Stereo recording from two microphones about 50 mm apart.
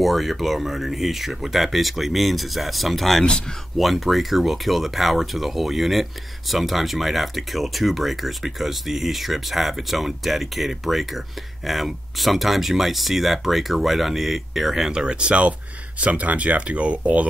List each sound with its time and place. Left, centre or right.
0.0 s speech: centre; by 17.3 s right